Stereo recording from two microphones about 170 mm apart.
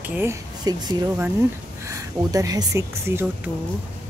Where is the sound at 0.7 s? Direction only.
20° right (ahead or behind).